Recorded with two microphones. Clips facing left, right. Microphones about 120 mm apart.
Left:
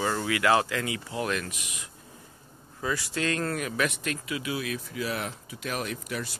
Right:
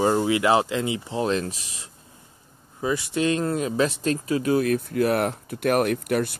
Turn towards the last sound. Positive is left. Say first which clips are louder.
# right 11 dB
turn(degrees=-60)  # may be behind; listen again after turning